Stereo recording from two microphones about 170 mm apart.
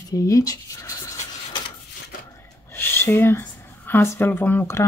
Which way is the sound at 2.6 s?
15° left (ahead or behind).